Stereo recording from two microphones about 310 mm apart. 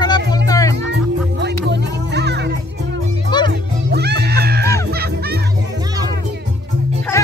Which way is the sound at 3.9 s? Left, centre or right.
Right.